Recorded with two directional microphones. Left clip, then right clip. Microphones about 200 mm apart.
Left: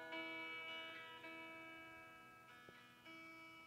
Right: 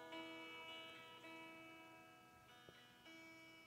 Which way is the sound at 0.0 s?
30° left (ahead or behind).